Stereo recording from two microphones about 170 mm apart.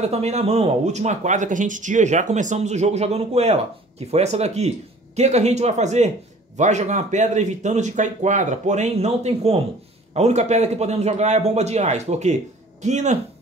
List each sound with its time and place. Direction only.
0.0 s a man's voice: 40° right (ahead or behind)